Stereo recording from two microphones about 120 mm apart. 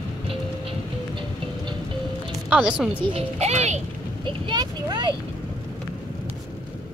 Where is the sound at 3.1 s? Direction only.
60° right (ahead or behind).